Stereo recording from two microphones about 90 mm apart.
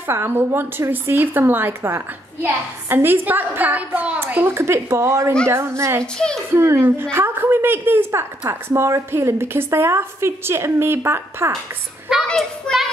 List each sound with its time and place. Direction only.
0.0 s a woman's voice: 25° right (ahead or behind)
6.1 s a child's voice: 10° left (ahead or behind)
6.5 s a woman's voice: 25° right (ahead or behind)
12.3 s a child's voice: 5° left (ahead or behind)